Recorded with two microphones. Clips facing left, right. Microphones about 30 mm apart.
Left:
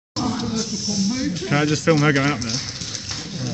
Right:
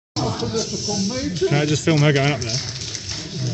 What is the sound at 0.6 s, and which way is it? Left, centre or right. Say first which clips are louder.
Speech: right 1 dB; right.